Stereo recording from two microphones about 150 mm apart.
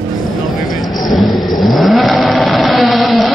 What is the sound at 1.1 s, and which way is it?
Vehicle, centre (ahead or behind).